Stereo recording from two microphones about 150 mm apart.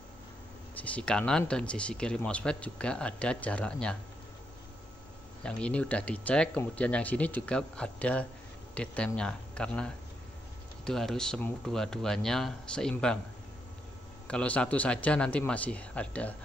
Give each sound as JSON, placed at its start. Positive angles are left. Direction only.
{"t": 0.7, "sound": "speech", "side_deg": 10}
{"t": 5.4, "sound": "speech", "side_deg": 10}
{"t": 14.2, "sound": "speech", "side_deg": 10}